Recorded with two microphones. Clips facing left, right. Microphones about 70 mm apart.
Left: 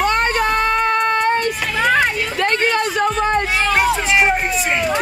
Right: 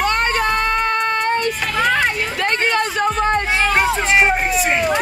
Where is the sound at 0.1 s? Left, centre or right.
Left.